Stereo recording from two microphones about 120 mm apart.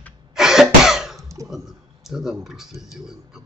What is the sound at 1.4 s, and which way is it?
Speech, 5° right (ahead or behind).